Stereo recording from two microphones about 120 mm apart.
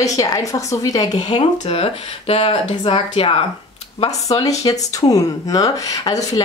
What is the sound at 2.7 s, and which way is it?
Speech, 45° left (ahead or behind).